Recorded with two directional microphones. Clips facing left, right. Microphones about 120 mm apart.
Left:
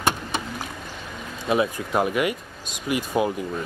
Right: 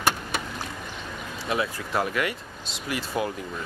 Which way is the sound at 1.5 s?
20° left (ahead or behind).